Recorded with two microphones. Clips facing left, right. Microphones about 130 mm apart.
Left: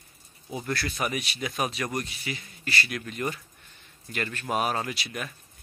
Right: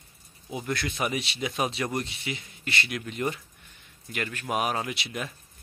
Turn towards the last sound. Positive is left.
turn(degrees=-25)  # may be behind; listen again after turning